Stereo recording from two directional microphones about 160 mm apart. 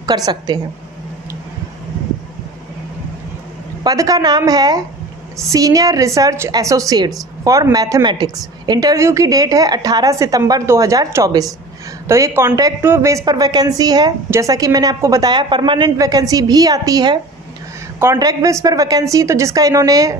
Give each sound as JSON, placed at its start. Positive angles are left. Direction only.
{"t": 0.0, "sound": "a woman's voice", "side_deg": -25}
{"t": 3.8, "sound": "a woman's voice", "side_deg": -20}